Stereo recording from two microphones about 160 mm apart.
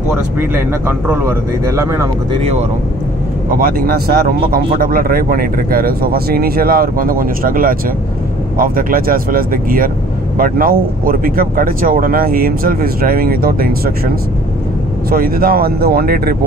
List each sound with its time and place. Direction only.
0.4 s speech: 15° right (ahead or behind)
3.5 s speech: 65° right (ahead or behind)